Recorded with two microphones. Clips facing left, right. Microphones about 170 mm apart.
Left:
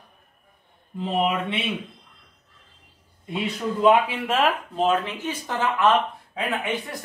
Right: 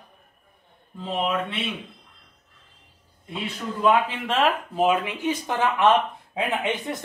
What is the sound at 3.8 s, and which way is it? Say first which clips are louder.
Speech: left 2 dB; 20° left (ahead or behind).